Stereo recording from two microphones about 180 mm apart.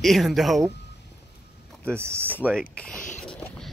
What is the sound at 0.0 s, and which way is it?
Speech, centre (ahead or behind).